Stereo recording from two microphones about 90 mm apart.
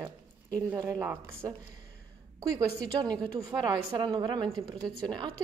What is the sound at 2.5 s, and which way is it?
A woman's voice, 50° right (ahead or behind).